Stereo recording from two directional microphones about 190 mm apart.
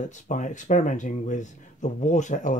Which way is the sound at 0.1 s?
40° left (ahead or behind).